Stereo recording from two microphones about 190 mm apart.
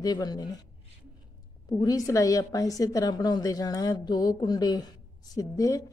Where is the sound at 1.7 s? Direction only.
20° left (ahead or behind).